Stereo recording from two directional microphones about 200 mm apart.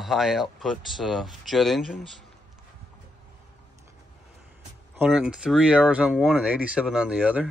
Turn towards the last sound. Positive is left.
turn(degrees=-5)  # may be behind; listen again after turning